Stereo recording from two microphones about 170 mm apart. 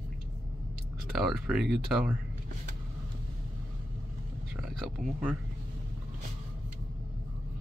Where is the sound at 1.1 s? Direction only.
Centre (ahead or behind).